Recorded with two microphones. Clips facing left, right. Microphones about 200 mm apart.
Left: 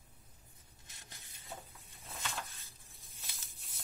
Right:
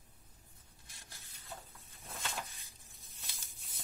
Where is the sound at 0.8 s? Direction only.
20° left (ahead or behind).